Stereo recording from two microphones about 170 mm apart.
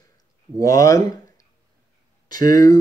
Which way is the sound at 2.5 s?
20° left (ahead or behind).